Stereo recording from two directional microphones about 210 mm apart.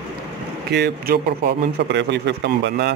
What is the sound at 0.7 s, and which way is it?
A man's voice, 50° right (ahead or behind).